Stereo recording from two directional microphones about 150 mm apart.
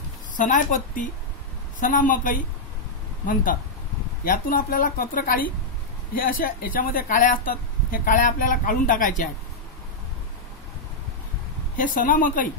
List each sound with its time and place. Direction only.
0.4 s speech: 60° left (ahead or behind)
4.2 s speech: 75° left (ahead or behind)
11.7 s speech: 65° left (ahead or behind)